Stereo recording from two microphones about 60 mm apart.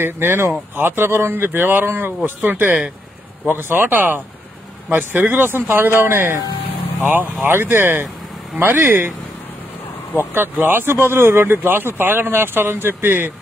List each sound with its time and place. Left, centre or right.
0.0 s speech: right
10.3 s speech: right